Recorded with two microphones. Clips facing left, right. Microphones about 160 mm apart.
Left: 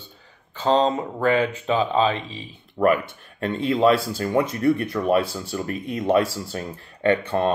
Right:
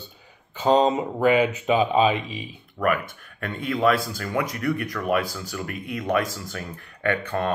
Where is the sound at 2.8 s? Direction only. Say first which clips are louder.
Left 5 dB; 30° left (ahead or behind).